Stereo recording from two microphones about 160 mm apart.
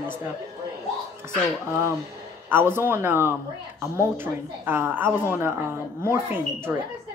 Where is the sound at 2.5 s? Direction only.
15° right (ahead or behind).